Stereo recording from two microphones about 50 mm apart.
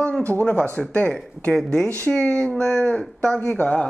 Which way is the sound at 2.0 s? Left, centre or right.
Left.